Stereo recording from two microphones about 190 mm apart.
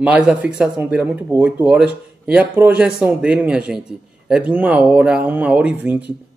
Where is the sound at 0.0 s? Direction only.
5° right (ahead or behind).